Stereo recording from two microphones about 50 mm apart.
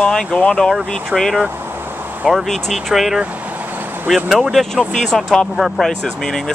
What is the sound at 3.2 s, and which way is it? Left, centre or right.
Vehicle, right.